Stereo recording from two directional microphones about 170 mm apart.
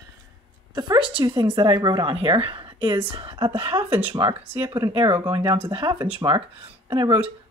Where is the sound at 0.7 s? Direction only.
25° right (ahead or behind).